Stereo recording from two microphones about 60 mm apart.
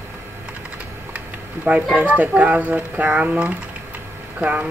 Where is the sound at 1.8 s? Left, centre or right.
Centre.